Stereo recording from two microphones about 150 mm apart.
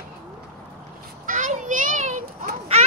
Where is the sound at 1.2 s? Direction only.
55° right (ahead or behind).